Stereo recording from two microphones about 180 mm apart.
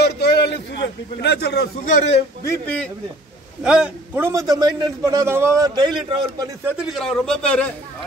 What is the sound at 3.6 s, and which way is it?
A man's voice, 5° right (ahead or behind).